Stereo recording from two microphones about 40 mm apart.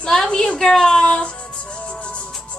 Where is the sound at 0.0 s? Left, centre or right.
Centre.